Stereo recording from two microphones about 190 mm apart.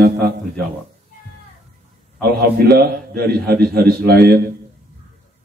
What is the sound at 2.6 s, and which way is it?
A man's voice, 55° right (ahead or behind).